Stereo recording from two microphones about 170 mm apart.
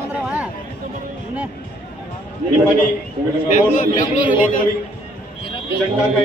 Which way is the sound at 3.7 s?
50° left (ahead or behind).